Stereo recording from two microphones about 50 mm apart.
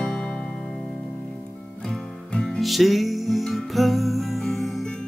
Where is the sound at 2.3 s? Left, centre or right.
Centre.